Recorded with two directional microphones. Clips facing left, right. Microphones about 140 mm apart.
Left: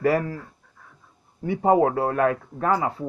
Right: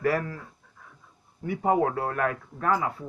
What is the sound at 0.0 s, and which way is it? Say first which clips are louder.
Speech: left 4 dB; 25° left (ahead or behind).